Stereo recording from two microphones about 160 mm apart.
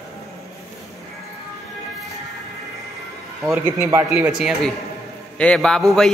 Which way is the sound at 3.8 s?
20° right (ahead or behind).